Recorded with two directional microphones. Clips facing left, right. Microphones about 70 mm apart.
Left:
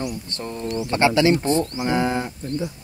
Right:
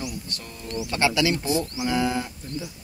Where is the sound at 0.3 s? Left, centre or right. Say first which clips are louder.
Left 7 dB; left.